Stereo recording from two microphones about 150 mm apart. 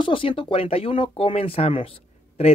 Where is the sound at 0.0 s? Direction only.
35° left (ahead or behind).